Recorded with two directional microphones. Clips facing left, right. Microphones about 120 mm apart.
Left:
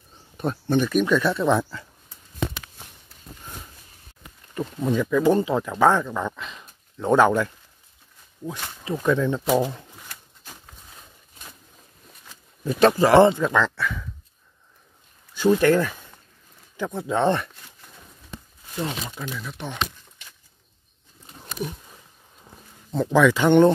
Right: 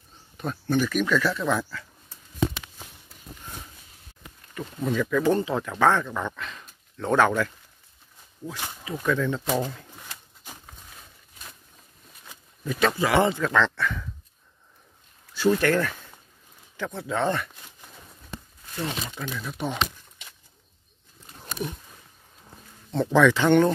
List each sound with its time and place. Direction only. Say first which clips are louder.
0.4 s speech: left 3 dB; 25° left (ahead or behind)
4.6 s speech: left 3 dB; 25° left (ahead or behind); by 6.4 s 10° left (ahead or behind)
6.4 s speech: even; 20° left (ahead or behind)
8.8 s speech: left 4 dB; 20° left (ahead or behind)
12.6 s speech: left 6 dB; 35° left (ahead or behind)
13.3 s speech: left 3 dB; 20° left (ahead or behind)
13.6 s speech: left 1 dB; 5° left (ahead or behind)
15.3 s speech: left 4 dB; 15° left (ahead or behind)
18.8 s speech: left 2 dB; 10° left (ahead or behind)
19.4 s a sound: right 4 dB; 10° right (ahead or behind)
22.5 s a sound: left 1 dB; 5° left (ahead or behind)